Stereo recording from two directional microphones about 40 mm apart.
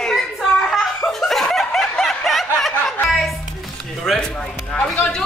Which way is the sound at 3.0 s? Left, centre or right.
Centre.